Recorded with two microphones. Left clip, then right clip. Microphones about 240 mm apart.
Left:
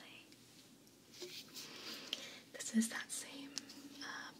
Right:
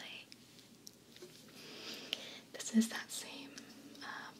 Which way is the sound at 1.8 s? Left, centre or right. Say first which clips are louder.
Right 3 dB; centre.